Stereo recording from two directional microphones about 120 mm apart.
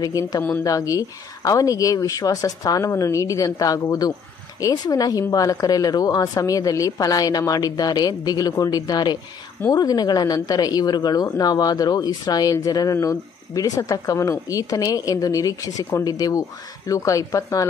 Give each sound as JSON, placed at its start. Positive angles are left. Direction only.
{"t": 0.0, "sound": "a woman's voice", "side_deg": 30}